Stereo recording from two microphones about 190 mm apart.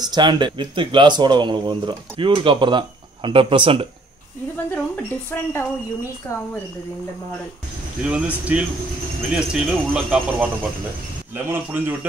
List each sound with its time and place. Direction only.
0.0 s speech: 20° right (ahead or behind)
4.6 s speech: 10° left (ahead or behind)
8.0 s speech: 5° right (ahead or behind)